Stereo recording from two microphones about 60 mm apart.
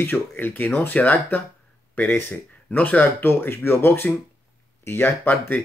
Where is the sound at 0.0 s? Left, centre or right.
Left.